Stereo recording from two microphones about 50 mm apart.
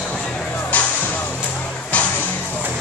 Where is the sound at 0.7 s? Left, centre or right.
Left.